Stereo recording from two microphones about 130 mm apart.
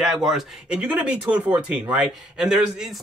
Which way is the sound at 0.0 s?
5° right (ahead or behind).